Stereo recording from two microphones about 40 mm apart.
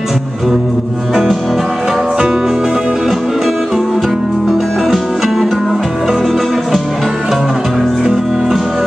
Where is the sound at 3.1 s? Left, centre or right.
Centre.